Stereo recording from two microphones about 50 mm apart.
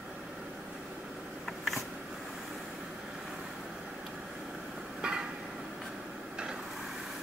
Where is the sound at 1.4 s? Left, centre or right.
Centre.